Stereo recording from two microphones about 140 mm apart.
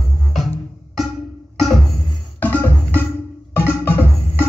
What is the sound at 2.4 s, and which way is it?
Music, 15° left (ahead or behind).